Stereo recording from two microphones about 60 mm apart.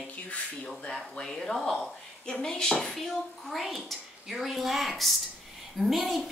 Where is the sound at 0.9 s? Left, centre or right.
Centre.